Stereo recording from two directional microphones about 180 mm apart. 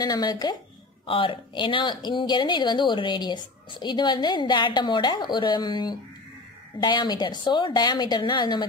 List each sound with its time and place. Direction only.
0.0 s speech: 20° left (ahead or behind)